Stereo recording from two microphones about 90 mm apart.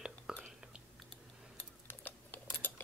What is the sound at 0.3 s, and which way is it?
Speech, 10° right (ahead or behind).